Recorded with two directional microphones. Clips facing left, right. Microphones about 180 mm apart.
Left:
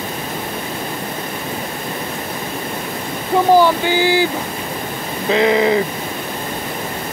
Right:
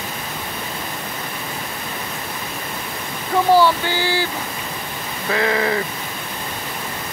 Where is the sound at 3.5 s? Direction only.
15° left (ahead or behind).